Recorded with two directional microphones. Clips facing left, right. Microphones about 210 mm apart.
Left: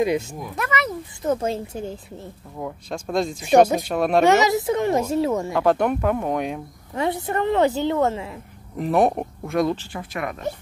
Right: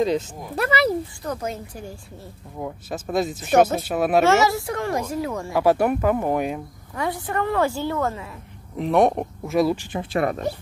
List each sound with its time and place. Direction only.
0.0 s speech: 10° left (ahead or behind)
0.6 s speech: 35° right (ahead or behind)
1.2 s a woman's voice: 25° left (ahead or behind)
2.6 s speech: 5° right (ahead or behind)
4.2 s a woman's voice: 15° left (ahead or behind)
5.5 s speech: 5° right (ahead or behind)
6.9 s a woman's voice: 25° left (ahead or behind)
8.7 s speech: centre (ahead or behind)
10.1 s speech: 35° right (ahead or behind)